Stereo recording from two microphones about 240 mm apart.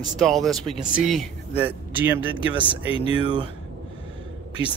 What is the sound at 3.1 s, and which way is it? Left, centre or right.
Speech, centre.